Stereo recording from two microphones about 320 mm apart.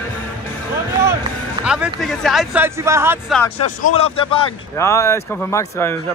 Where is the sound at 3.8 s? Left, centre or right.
Left.